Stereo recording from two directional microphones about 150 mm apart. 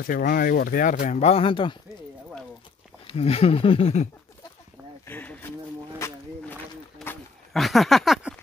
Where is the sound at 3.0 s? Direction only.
40° left (ahead or behind).